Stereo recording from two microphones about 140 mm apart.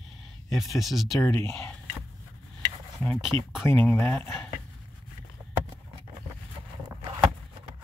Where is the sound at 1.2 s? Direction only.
20° left (ahead or behind).